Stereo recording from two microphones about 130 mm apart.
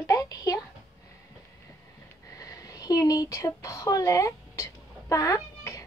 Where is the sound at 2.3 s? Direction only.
25° left (ahead or behind).